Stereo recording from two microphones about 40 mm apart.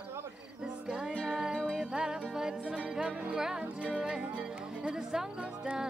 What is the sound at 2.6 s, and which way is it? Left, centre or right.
Speech, right.